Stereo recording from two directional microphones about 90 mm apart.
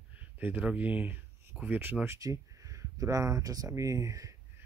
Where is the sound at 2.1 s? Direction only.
40° right (ahead or behind).